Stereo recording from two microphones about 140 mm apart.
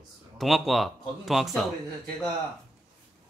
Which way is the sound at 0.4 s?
Centre (ahead or behind).